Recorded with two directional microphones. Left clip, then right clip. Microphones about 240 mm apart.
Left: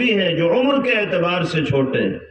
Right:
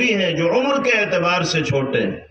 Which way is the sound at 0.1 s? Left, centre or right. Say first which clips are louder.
Left 1 dB; right.